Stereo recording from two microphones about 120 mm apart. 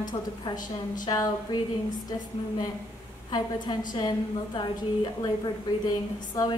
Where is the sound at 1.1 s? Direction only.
35° left (ahead or behind).